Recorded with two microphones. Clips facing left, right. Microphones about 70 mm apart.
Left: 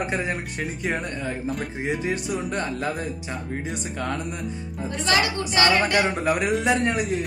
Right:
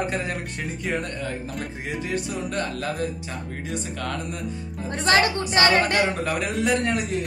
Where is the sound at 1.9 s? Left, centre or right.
Centre.